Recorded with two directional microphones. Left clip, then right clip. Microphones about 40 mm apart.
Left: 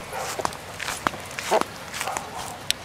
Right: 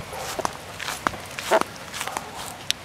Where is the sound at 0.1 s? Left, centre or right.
Centre.